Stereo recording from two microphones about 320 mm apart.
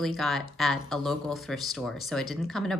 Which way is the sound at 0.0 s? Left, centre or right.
Centre.